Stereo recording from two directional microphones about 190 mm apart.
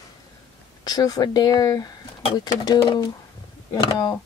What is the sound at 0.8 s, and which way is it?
A woman's voice, 20° left (ahead or behind).